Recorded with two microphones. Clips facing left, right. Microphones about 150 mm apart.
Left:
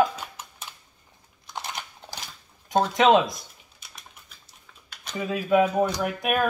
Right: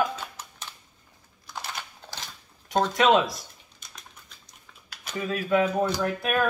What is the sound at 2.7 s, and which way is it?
Speech, 20° left (ahead or behind).